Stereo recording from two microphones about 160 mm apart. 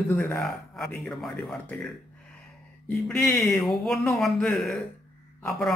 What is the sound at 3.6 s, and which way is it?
Speech, centre (ahead or behind).